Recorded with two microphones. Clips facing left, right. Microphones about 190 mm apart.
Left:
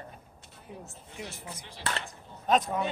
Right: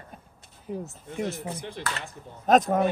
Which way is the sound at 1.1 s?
55° right (ahead or behind).